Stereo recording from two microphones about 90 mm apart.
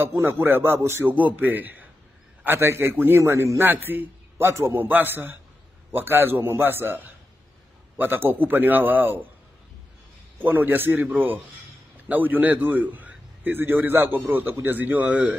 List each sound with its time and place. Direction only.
0.0 s a man's voice: 30° right (ahead or behind)
1.1 s a man's voice: 20° right (ahead or behind)
3.6 s a man's voice: 20° right (ahead or behind)
10.4 s a man's voice: 20° right (ahead or behind)